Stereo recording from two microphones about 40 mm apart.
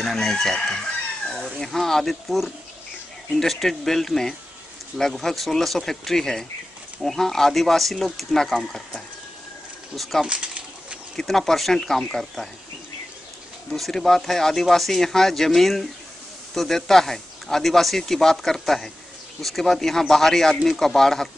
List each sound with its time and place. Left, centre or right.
0.0 s chicken: centre
1.2 s speech: centre
2.2 s speech: centre
10.2 s pigeon: right
11.1 s speech: centre
13.7 s speech: centre